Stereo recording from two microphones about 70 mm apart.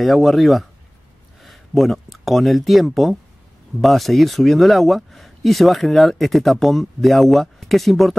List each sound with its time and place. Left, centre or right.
0.0 s speech: centre